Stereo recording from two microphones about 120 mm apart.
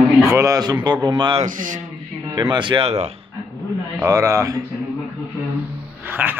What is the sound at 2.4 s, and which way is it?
Speech, 40° right (ahead or behind).